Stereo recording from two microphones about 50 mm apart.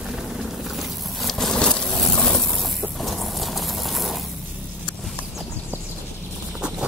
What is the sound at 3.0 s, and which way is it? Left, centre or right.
Mechanisms, centre.